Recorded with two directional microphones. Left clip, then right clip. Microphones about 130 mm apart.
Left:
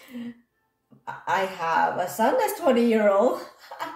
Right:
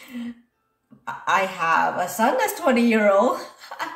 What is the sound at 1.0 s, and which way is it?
Speech, 15° left (ahead or behind).